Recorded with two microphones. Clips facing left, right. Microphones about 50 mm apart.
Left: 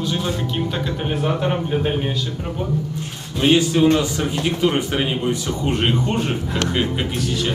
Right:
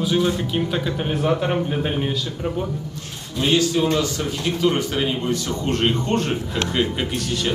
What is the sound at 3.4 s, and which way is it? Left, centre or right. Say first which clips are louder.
A man's voice: left 4 dB; left.